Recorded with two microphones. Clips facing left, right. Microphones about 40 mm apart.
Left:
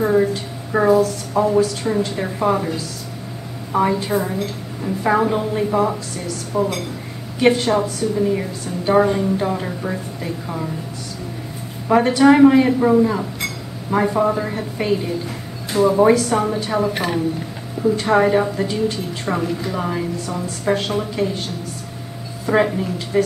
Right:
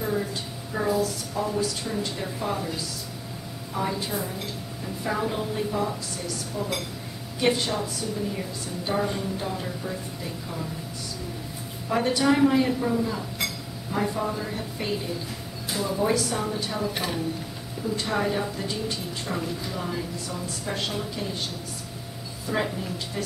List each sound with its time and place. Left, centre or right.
0.1 s a woman's voice: left
6.5 s a woman's voice: left
7.3 s a woman's voice: left
11.9 s a woman's voice: left
12.4 s a woman's voice: left
22.5 s a woman's voice: left